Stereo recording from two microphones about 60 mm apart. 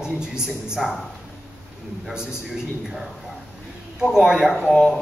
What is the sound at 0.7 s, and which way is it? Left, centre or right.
Speech, centre.